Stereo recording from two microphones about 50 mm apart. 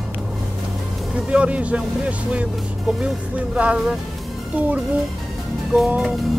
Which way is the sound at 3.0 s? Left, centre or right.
Right.